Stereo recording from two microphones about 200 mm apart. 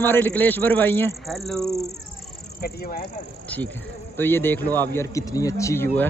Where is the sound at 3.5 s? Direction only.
10° left (ahead or behind).